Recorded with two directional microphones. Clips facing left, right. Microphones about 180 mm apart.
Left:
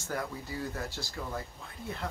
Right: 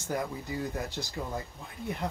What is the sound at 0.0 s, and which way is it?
Speech, 20° right (ahead or behind).